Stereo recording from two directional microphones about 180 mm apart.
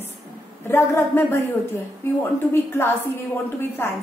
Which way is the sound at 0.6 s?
15° left (ahead or behind).